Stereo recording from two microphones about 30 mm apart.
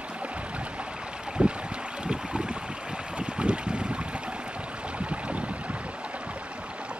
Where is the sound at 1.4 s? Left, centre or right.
Right.